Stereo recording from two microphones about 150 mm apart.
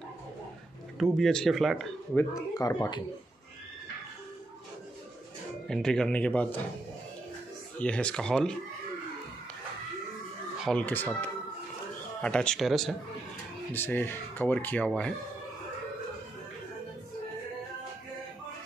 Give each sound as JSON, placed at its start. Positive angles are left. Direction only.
{"t": 0.9, "sound": "speech", "side_deg": 0}
{"t": 2.1, "sound": "speech", "side_deg": 20}
{"t": 5.7, "sound": "speech", "side_deg": 5}
{"t": 7.8, "sound": "speech", "side_deg": 5}
{"t": 10.6, "sound": "speech", "side_deg": 5}
{"t": 13.7, "sound": "speech", "side_deg": 15}